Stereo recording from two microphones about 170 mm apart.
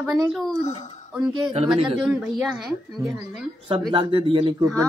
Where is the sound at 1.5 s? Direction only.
30° right (ahead or behind).